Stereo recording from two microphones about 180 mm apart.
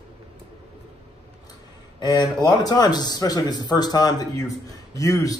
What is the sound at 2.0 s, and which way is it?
Speech, 25° left (ahead or behind).